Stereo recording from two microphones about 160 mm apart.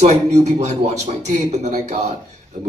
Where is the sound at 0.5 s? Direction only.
40° right (ahead or behind).